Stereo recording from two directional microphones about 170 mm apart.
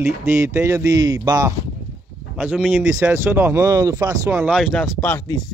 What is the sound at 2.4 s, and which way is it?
Speech, 5° right (ahead or behind).